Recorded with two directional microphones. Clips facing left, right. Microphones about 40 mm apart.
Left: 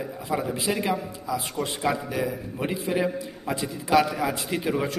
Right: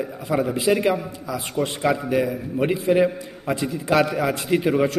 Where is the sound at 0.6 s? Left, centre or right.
Right.